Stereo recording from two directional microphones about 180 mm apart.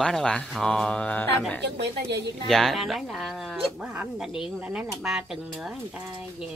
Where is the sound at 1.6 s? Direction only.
70° right (ahead or behind).